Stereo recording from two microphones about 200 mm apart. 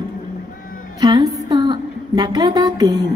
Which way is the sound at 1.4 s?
25° right (ahead or behind).